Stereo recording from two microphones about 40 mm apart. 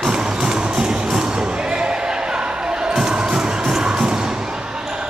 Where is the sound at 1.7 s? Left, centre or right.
Right.